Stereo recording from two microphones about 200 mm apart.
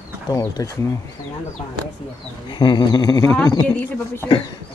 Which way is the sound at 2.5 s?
20° left (ahead or behind).